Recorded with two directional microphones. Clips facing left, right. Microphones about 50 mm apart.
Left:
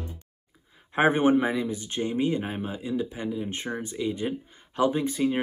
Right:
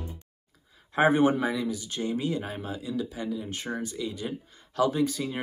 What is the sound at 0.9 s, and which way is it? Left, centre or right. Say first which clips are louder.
Speech: left 1 dB; left.